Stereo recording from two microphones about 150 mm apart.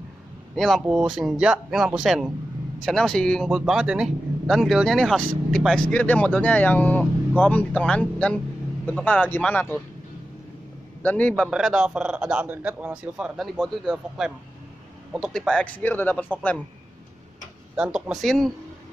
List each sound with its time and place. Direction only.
0.6 s speech: centre (ahead or behind)
11.0 s speech: 10° left (ahead or behind)
11.4 s speech: 5° right (ahead or behind)
17.7 s speech: 10° right (ahead or behind)